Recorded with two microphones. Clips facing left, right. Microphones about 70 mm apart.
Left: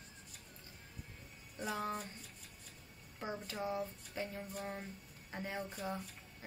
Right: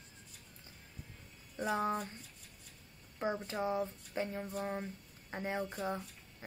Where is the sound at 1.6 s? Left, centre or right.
Right.